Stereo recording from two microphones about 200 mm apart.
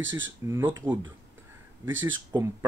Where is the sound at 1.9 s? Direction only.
75° right (ahead or behind).